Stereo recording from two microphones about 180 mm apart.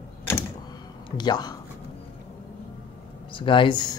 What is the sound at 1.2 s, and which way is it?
Speech, 25° left (ahead or behind).